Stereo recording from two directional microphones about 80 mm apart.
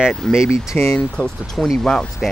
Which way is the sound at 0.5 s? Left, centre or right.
Left.